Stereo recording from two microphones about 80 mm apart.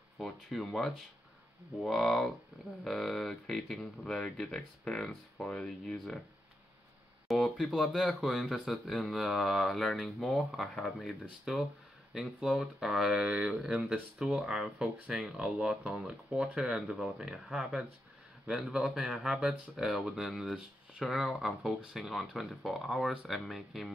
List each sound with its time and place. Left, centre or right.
0.2 s speech: centre
7.2 s speech: centre